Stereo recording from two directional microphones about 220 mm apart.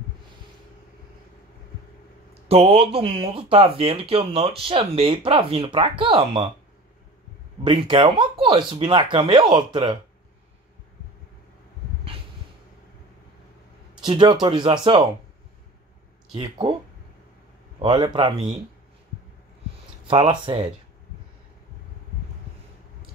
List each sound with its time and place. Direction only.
2.4 s speech: 25° right (ahead or behind)
7.6 s speech: 20° right (ahead or behind)
14.0 s speech: 20° right (ahead or behind)
16.3 s speech: 20° right (ahead or behind)
17.7 s speech: 20° right (ahead or behind)
20.1 s speech: 25° right (ahead or behind)